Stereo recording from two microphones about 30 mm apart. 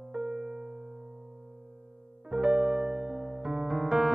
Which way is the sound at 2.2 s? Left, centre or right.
Centre.